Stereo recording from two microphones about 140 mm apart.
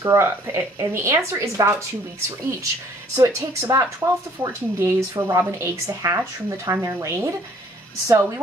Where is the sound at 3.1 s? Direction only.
20° right (ahead or behind).